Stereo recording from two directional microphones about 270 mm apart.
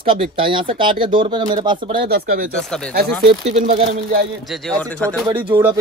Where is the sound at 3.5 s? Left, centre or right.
Right.